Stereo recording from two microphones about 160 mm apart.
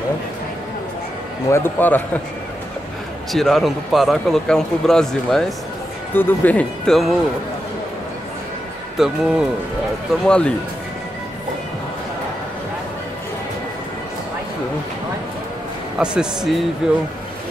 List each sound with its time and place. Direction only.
1.5 s speech: 15° left (ahead or behind)
3.3 s speech: centre (ahead or behind)
8.9 s speech: centre (ahead or behind)
16.0 s speech: 5° right (ahead or behind)